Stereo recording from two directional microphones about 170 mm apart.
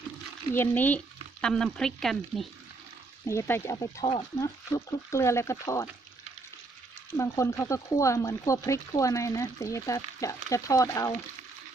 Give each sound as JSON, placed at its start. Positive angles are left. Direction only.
{"t": 0.5, "sound": "frying", "side_deg": 10}
{"t": 3.3, "sound": "speech", "side_deg": 15}
{"t": 3.7, "sound": "speech", "side_deg": 25}
{"t": 7.1, "sound": "speech", "side_deg": 15}